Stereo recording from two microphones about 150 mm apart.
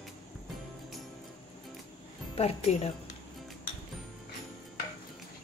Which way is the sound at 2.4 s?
45° left (ahead or behind).